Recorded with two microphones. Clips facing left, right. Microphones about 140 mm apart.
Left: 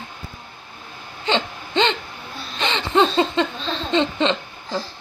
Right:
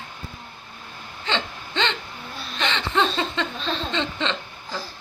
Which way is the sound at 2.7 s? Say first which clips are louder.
Left 5 dB; 20° left (ahead or behind).